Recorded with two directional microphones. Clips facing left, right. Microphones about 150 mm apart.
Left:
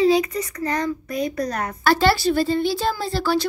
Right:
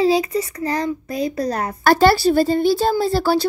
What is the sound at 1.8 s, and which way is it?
Speech, 45° right (ahead or behind).